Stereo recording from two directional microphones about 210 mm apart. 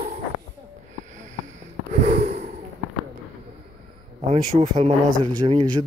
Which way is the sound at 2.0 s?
35° right (ahead or behind).